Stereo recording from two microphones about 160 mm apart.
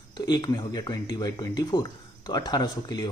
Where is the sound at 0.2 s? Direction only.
25° left (ahead or behind).